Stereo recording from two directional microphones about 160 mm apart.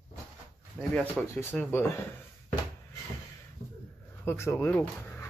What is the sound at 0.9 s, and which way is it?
Speech, 10° left (ahead or behind).